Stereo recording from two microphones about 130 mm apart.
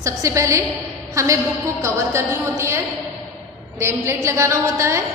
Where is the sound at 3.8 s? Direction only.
20° right (ahead or behind).